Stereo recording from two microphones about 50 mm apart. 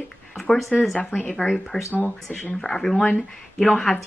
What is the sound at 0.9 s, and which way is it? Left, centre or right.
Speech, left.